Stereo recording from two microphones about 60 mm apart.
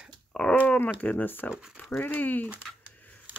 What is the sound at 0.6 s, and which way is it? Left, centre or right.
Speech, left.